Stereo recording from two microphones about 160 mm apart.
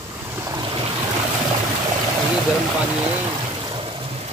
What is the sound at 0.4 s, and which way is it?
Waves, 25° right (ahead or behind).